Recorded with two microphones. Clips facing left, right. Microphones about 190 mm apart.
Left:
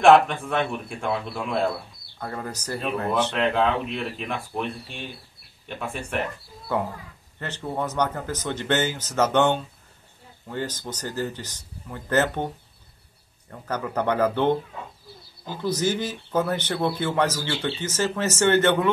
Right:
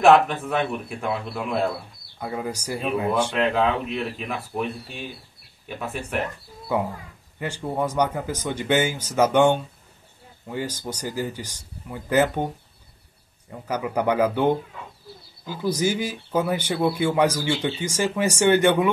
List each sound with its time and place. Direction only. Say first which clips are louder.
0.0 s a man's voice: even; 5° right (ahead or behind)
13.5 s speech: right 2 dB; 10° right (ahead or behind)
15.5 s speech: right 1 dB; 10° right (ahead or behind)